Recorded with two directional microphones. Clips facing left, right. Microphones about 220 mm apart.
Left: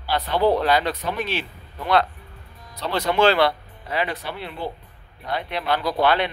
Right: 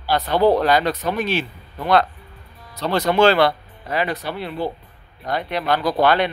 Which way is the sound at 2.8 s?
45° right (ahead or behind).